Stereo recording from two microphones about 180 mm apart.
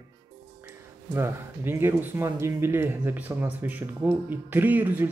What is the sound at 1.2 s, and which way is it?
Speech, 15° right (ahead or behind).